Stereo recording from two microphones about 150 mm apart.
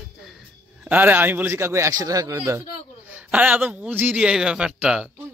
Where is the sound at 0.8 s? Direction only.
10° right (ahead or behind).